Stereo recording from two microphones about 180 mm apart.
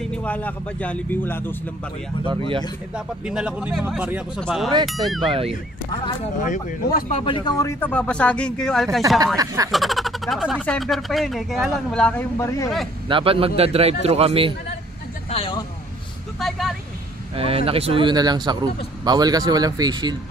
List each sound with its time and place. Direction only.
0.0 s speech: 5° left (ahead or behind)
2.2 s speech: 30° right (ahead or behind)
3.3 s speech: 5° right (ahead or behind)
5.3 s speech: 30° right (ahead or behind)
6.4 s speech: 50° left (ahead or behind)
7.1 s speech: 30° left (ahead or behind)
13.1 s speech: 30° right (ahead or behind)
15.2 s vehicle: 30° left (ahead or behind)
16.3 s vehicle: centre (ahead or behind)
17.4 s speech: 30° right (ahead or behind)